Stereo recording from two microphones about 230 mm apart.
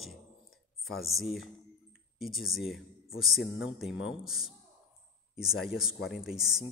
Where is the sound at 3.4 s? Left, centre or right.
Left.